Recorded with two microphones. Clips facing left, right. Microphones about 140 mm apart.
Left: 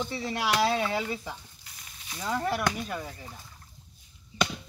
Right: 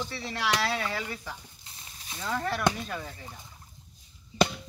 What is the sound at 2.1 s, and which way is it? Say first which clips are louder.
Speech: left 2 dB; 10° left (ahead or behind).